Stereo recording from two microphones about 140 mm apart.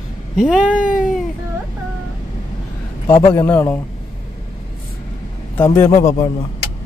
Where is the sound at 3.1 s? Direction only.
40° left (ahead or behind).